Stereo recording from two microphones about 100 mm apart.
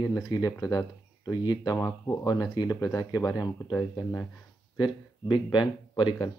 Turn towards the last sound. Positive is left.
turn(degrees=55)  # may be behind; listen again after turning